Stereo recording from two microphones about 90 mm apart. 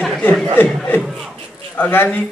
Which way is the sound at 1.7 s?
20° left (ahead or behind).